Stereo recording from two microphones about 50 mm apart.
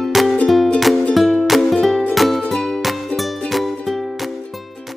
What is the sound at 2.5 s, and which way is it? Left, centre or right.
Music, centre.